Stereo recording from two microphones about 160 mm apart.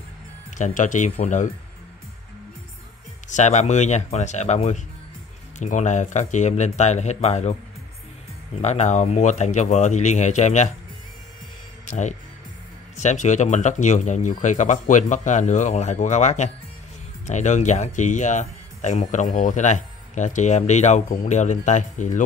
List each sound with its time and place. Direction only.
0.6 s speech: 50° left (ahead or behind)
3.3 s speech: 45° left (ahead or behind)
8.5 s speech: 45° left (ahead or behind)
11.8 s speech: 50° left (ahead or behind)